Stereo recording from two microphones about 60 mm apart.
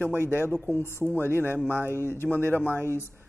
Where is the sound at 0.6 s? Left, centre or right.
Left.